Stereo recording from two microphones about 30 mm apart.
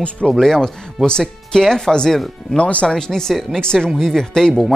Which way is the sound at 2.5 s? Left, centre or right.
Left.